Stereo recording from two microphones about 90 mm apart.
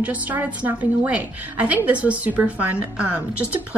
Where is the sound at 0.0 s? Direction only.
20° right (ahead or behind).